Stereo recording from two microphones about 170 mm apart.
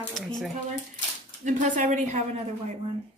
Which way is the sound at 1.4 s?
45° right (ahead or behind).